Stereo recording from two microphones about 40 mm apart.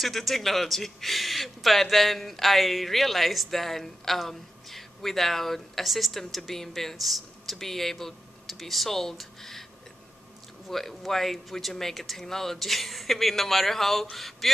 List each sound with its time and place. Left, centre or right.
0.0 s speech: centre
10.7 s speech: centre
14.1 s a sound: centre